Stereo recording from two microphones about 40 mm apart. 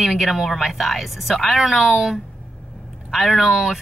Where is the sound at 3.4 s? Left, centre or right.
Centre.